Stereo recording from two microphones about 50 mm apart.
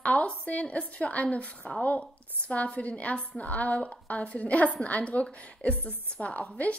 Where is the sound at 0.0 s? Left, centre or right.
Left.